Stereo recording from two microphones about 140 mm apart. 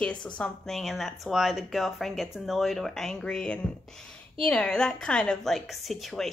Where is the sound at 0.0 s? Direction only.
10° left (ahead or behind).